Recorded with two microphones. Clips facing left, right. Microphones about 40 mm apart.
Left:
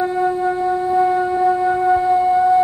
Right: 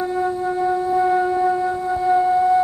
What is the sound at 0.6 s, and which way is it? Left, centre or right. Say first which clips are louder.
Music: right 1 dB; centre.